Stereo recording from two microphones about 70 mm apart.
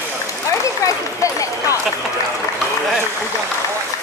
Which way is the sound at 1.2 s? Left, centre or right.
Left.